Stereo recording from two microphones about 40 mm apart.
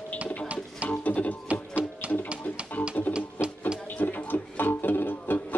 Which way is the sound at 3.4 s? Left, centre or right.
Left.